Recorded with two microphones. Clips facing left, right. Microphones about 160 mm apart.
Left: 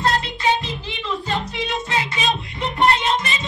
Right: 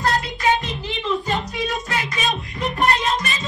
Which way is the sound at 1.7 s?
25° left (ahead or behind).